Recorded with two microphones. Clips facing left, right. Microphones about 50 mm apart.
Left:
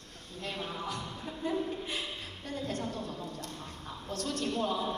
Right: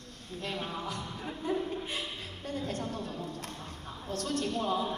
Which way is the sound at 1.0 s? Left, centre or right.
Right.